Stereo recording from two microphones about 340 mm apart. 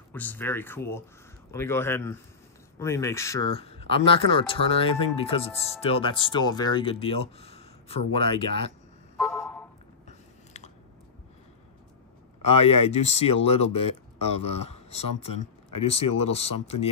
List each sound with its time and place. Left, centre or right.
0.1 s speech: centre
9.1 s a sound: centre
10.0 s biting: centre
12.4 s speech: centre